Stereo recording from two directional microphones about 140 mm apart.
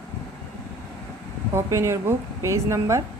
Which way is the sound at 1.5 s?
20° right (ahead or behind).